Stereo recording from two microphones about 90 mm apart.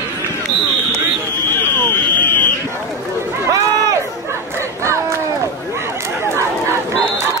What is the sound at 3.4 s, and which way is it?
Crowd, 35° right (ahead or behind).